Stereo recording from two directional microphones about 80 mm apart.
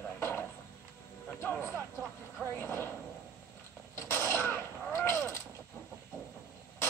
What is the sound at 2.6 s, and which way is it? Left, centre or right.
Speech, left.